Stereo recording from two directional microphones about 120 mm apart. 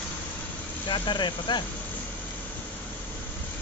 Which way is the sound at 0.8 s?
40° left (ahead or behind).